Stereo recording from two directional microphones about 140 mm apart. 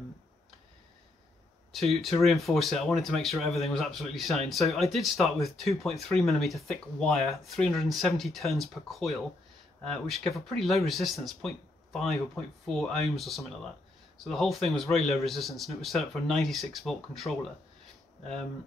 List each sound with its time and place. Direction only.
1.7 s speech: centre (ahead or behind)